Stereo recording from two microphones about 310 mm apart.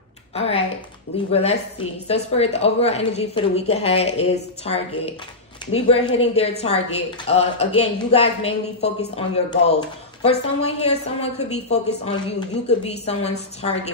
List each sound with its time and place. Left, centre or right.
0.3 s speech: centre